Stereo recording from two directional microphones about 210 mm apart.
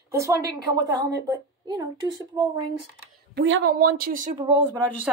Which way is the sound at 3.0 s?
55° right (ahead or behind).